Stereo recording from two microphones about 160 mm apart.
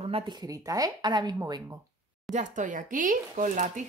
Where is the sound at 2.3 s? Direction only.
50° right (ahead or behind).